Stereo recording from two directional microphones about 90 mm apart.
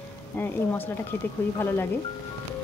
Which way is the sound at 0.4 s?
20° left (ahead or behind).